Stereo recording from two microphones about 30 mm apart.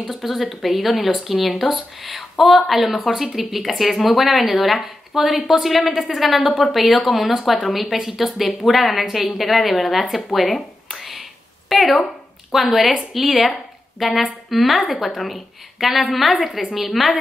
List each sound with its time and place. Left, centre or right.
0.0 s speech: centre